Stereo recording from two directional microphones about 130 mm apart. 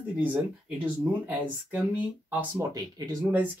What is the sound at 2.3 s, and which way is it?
Speech, 10° right (ahead or behind).